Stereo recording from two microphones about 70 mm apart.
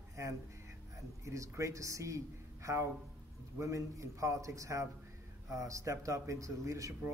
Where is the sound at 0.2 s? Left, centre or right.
Right.